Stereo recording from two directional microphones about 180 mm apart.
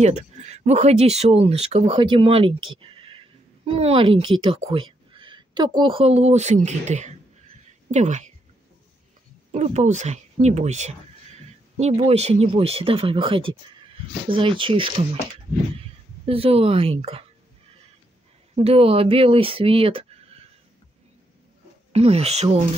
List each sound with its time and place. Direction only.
0.0 s speech: 40° right (ahead or behind)
4.5 s a sound: 30° right (ahead or behind)
5.8 s speech: 30° right (ahead or behind)
9.5 s speech: 40° right (ahead or behind)
16.3 s speech: 35° right (ahead or behind)
18.6 s speech: 35° right (ahead or behind)
21.9 s speech: 35° right (ahead or behind)